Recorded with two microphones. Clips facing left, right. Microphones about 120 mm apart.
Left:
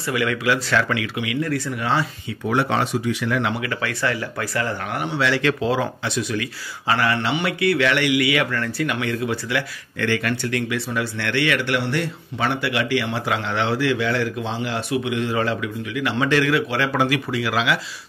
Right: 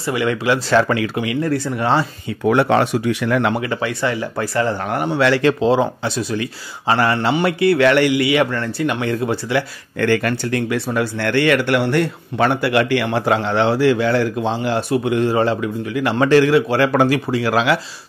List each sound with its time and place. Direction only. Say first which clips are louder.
0.0 s speech: right 3 dB; 30° right (ahead or behind)
2.4 s speech: right 6 dB; 60° right (ahead or behind)
3.6 s speech: right 4 dB; 25° right (ahead or behind); by 5.4 s 50° right (ahead or behind)
5.4 s speech: right 6 dB; 30° right (ahead or behind)
10.0 s speech: right 5 dB; 45° right (ahead or behind)
17.1 s speech: right 5 dB; 35° right (ahead or behind)